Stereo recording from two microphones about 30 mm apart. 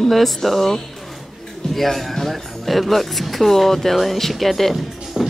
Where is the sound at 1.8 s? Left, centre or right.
Centre.